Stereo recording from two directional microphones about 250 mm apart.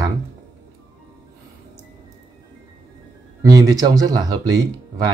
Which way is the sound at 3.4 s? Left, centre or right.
Centre.